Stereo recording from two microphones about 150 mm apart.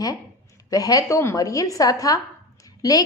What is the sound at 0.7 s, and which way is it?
A woman's voice, 25° left (ahead or behind).